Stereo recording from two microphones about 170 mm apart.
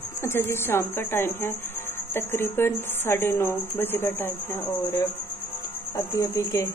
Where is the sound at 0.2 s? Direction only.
15° left (ahead or behind).